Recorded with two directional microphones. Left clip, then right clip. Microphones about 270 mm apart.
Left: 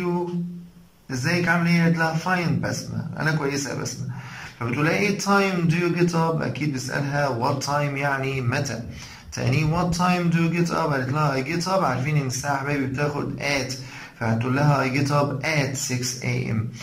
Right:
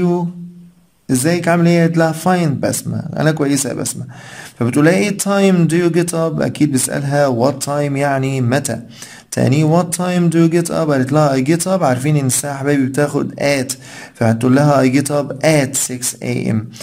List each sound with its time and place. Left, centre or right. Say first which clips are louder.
1.2 s speech: right 7 dB; right